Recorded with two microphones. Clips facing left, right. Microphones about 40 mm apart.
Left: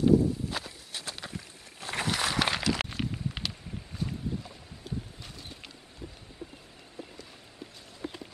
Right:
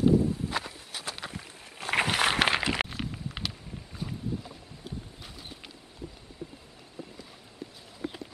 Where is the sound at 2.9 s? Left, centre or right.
Centre.